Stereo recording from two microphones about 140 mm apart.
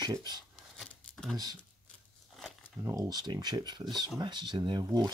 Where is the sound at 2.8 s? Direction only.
25° right (ahead or behind).